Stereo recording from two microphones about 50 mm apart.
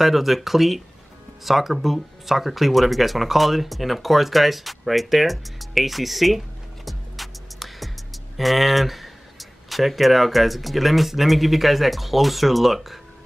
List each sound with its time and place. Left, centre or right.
0.0 s speech: centre